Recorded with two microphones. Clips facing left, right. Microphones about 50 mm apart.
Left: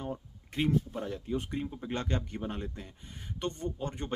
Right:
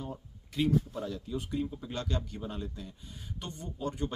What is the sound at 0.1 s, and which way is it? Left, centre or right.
Speech, left.